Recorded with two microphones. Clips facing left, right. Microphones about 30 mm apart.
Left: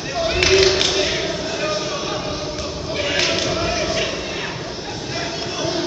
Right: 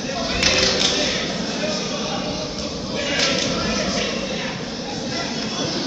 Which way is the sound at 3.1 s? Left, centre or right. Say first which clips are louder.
Left 1 dB; centre.